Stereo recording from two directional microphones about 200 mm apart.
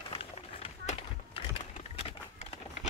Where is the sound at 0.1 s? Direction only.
30° left (ahead or behind).